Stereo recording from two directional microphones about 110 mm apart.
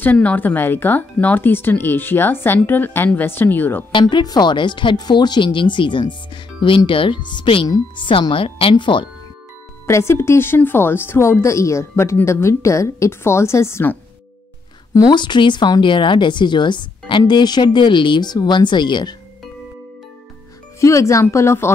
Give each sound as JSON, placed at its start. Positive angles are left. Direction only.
{"t": 0.0, "sound": "speech", "side_deg": 15}
{"t": 4.0, "sound": "speech", "side_deg": 35}
{"t": 9.8, "sound": "a woman's voice", "side_deg": 25}
{"t": 15.0, "sound": "speech", "side_deg": 40}
{"t": 20.8, "sound": "a woman's voice", "side_deg": 30}